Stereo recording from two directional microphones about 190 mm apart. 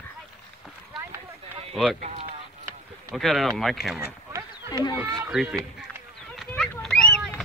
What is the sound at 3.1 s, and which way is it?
Speech, centre (ahead or behind).